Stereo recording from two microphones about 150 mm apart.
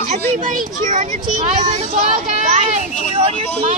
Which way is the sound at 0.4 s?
60° right (ahead or behind).